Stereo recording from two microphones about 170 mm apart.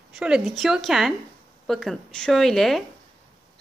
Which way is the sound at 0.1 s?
5° right (ahead or behind).